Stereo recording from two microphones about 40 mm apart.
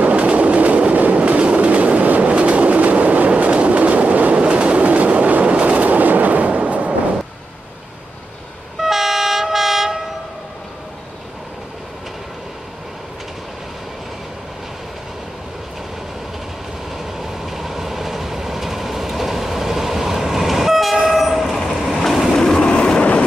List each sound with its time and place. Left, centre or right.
0.0 s train: right
8.7 s train: centre
16.9 s train: centre
22.7 s train: left